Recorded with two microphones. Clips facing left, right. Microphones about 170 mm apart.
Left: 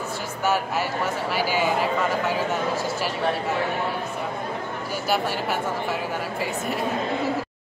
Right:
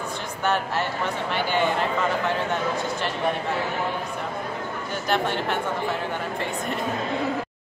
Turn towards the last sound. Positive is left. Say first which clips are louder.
# left 1 dB
turn(degrees=5)  # may be behind; listen again after turning